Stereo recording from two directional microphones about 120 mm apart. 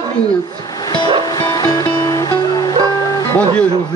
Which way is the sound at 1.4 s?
35° left (ahead or behind).